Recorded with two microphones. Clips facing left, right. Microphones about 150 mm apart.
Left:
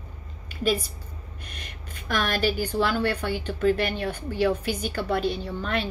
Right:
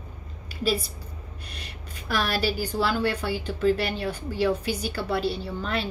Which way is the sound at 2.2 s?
45° left (ahead or behind).